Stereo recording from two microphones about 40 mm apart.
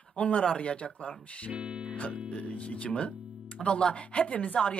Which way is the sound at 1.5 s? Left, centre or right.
Right.